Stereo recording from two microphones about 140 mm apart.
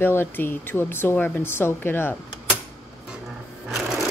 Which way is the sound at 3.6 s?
5° right (ahead or behind).